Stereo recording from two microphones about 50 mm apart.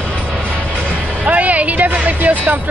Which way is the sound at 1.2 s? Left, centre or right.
Right.